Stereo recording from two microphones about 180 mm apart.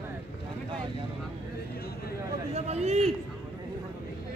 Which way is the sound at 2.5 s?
35° right (ahead or behind).